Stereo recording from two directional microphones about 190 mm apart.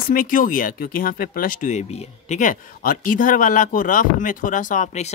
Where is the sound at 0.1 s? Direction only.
45° left (ahead or behind).